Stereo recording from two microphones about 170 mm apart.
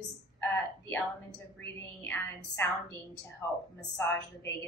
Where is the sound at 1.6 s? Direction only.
10° left (ahead or behind).